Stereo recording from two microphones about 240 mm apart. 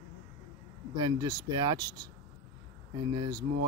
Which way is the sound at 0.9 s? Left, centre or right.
Centre.